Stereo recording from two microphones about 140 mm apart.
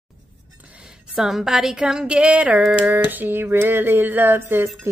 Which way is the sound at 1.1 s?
5° right (ahead or behind).